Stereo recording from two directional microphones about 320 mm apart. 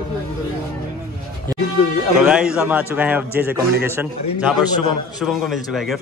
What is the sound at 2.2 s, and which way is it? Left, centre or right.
A man's voice, centre.